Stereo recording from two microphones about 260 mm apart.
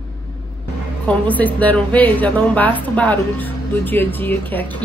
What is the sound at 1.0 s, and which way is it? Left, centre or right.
A woman's voice, centre.